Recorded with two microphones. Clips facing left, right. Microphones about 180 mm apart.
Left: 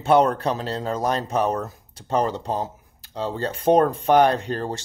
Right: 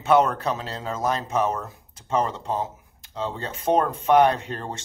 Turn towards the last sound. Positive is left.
turn(degrees=35)  # may be behind; listen again after turning